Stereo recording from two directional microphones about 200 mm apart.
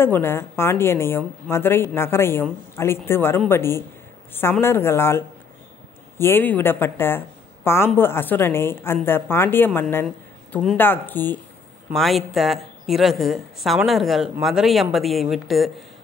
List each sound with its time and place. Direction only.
0.0 s a woman's voice: 10° left (ahead or behind)